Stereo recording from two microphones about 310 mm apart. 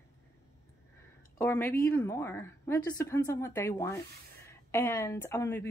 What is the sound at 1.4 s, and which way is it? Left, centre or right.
A woman's voice, centre.